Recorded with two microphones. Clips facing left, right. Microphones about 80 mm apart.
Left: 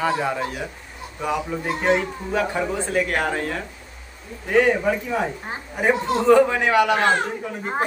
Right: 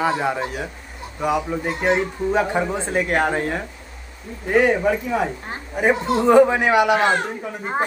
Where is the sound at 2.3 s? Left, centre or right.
Right.